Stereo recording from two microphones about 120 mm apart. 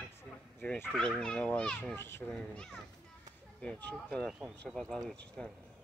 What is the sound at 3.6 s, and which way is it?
Speech, 10° left (ahead or behind).